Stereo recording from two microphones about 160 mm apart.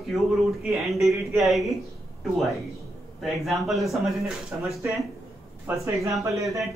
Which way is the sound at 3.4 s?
Centre (ahead or behind).